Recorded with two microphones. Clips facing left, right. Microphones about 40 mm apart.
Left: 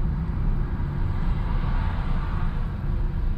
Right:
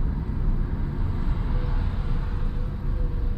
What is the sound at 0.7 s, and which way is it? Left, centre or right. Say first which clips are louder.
Vehicle: even; centre.